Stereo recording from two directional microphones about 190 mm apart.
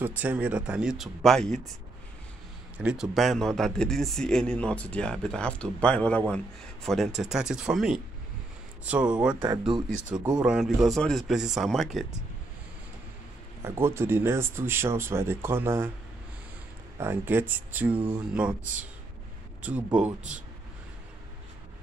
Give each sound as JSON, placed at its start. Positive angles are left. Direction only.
{"t": 0.0, "sound": "speech", "side_deg": -10}
{"t": 2.8, "sound": "speech", "side_deg": -5}
{"t": 9.4, "sound": "speech", "side_deg": -20}
{"t": 10.4, "sound": "speech", "side_deg": -5}
{"t": 13.7, "sound": "speech", "side_deg": -15}
{"t": 17.0, "sound": "speech", "side_deg": -10}